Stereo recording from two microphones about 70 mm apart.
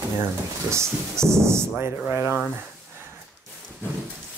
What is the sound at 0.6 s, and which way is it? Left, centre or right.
Speech, right.